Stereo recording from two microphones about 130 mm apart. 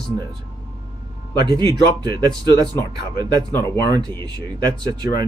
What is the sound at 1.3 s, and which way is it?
Speech, 30° right (ahead or behind).